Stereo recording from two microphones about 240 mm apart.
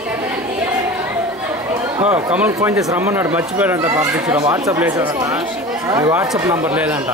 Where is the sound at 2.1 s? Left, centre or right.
Centre.